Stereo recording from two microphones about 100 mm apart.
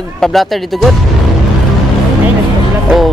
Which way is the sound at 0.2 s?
Centre (ahead or behind).